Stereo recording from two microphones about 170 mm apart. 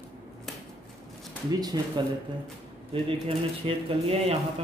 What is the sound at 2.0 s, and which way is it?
Speech, 25° right (ahead or behind).